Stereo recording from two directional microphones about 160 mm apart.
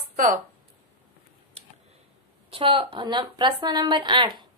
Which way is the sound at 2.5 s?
35° right (ahead or behind).